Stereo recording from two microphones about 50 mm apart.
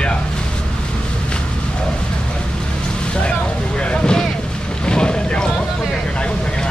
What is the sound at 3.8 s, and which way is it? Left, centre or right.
Vehicle, centre.